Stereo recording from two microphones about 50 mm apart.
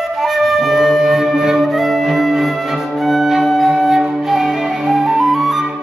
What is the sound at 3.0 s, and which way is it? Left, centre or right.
Music, centre.